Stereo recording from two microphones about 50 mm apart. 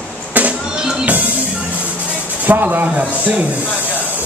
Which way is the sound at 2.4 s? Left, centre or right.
Right.